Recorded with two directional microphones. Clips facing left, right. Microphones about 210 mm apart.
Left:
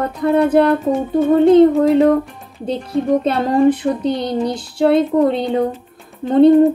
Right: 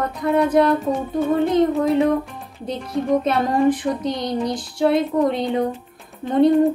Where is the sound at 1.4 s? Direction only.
30° left (ahead or behind).